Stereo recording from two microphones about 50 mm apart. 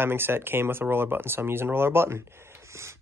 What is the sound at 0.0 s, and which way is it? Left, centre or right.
Speech, right.